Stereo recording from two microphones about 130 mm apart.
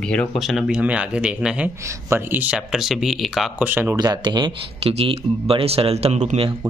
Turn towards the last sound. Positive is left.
turn(degrees=-60)  # may be behind; listen again after turning